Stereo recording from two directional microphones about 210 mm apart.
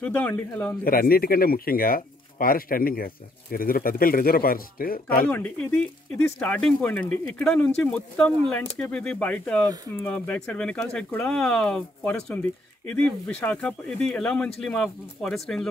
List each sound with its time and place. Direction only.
0.0 s a man's voice: 5° left (ahead or behind)
0.8 s speech: 45° left (ahead or behind)
5.2 s a man's voice: 5° left (ahead or behind)